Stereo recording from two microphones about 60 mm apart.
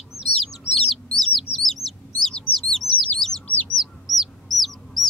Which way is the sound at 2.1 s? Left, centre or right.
Centre.